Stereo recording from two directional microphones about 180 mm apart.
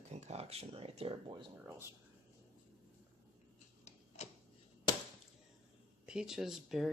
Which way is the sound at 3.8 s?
40° left (ahead or behind).